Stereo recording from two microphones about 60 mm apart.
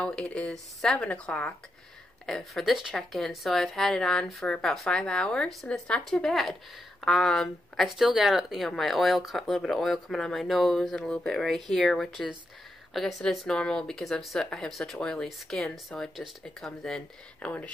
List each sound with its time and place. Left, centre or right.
0.0 s a woman's voice: centre
0.5 s speech: centre
0.9 s a woman's voice: centre
2.2 s speech: centre
5.7 s a woman's voice: centre
6.0 s speech: centre
8.0 s speech: centre
13.5 s speech: centre
17.4 s speech: left